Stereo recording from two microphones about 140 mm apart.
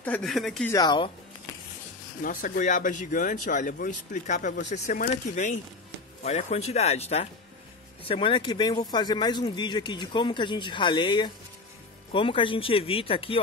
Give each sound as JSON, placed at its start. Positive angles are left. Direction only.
{"t": 0.0, "sound": "speech", "side_deg": 5}
{"t": 0.7, "sound": "speech", "side_deg": 30}
{"t": 2.2, "sound": "speech", "side_deg": 80}
{"t": 4.9, "sound": "speech", "side_deg": 70}
{"t": 6.2, "sound": "speech", "side_deg": 50}
{"t": 8.1, "sound": "speech", "side_deg": 40}